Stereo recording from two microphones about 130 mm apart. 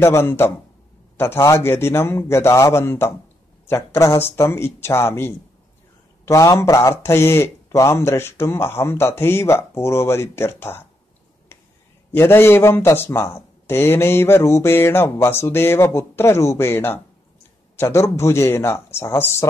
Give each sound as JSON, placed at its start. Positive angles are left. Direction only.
{"t": 0.0, "sound": "a man's voice", "side_deg": 20}
{"t": 12.1, "sound": "a man's voice", "side_deg": 20}